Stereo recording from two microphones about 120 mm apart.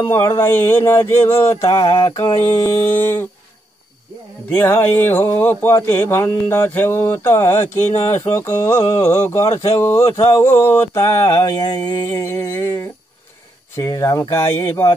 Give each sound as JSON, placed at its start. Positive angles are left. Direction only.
{"t": 0.0, "sound": "speech", "side_deg": 25}
{"t": 1.6, "sound": "a sound", "side_deg": 50}
{"t": 2.0, "sound": "speech", "side_deg": 30}
{"t": 4.5, "sound": "speech", "side_deg": 20}
{"t": 13.8, "sound": "speech", "side_deg": 30}